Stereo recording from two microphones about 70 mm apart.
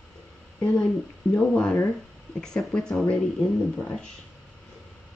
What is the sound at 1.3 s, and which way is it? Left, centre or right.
Speech, centre.